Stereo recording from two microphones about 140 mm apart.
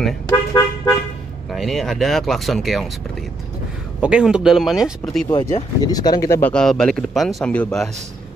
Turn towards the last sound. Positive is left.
turn(degrees=5)  # may be behind; listen again after turning